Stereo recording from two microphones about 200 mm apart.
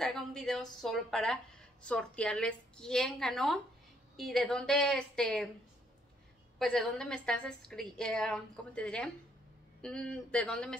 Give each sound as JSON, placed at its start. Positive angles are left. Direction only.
{"t": 0.0, "sound": "a woman's voice", "side_deg": 0}
{"t": 6.6, "sound": "a woman's voice", "side_deg": 0}